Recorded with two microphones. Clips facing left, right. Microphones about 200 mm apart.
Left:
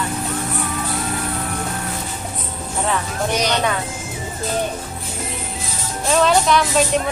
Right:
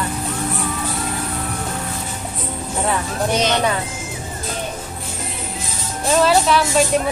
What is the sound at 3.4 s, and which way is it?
Speech, 20° right (ahead or behind).